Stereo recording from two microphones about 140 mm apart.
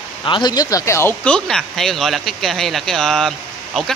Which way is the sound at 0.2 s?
30° left (ahead or behind).